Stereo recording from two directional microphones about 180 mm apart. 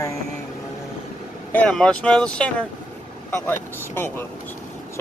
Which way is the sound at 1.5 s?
5° left (ahead or behind).